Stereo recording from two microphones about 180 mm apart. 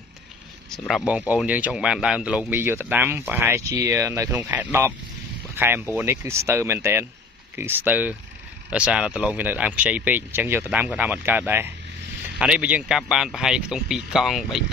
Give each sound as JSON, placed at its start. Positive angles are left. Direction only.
{"t": 0.7, "sound": "a man's voice", "side_deg": 0}